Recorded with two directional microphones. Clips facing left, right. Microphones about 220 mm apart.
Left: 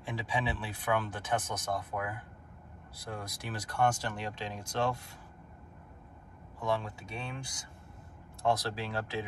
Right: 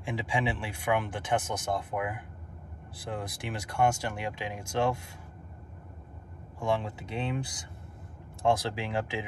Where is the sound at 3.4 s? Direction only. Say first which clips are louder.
Right 2 dB; 20° right (ahead or behind).